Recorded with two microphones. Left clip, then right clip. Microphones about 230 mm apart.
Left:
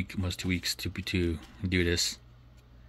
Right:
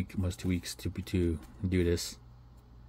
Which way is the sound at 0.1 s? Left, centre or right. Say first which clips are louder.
Left 2 dB; centre.